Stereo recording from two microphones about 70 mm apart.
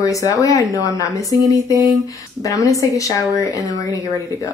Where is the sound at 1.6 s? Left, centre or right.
Right.